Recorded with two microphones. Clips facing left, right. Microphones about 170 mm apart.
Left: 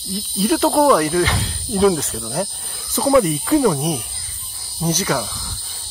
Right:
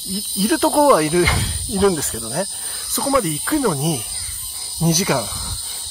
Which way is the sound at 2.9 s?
20° left (ahead or behind).